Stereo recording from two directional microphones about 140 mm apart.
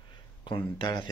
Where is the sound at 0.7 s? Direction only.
30° left (ahead or behind).